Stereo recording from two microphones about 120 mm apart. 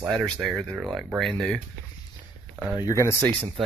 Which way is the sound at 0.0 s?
Centre (ahead or behind).